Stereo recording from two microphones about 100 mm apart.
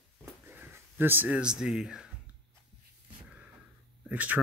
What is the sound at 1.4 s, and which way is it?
Speech, 10° right (ahead or behind).